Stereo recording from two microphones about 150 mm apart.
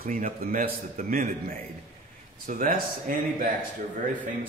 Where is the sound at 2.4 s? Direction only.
60° right (ahead or behind).